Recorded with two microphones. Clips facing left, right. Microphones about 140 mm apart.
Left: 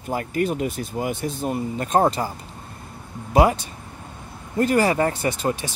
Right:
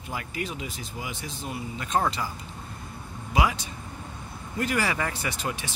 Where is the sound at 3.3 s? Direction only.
45° left (ahead or behind).